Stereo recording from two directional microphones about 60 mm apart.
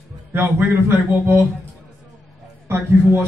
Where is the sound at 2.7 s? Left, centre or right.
Right.